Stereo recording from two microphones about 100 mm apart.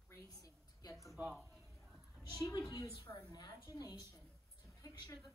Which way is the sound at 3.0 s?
45° left (ahead or behind).